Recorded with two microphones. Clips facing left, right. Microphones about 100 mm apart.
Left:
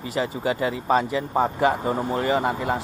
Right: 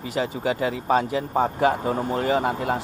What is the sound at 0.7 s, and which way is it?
Speech, 60° right (ahead or behind).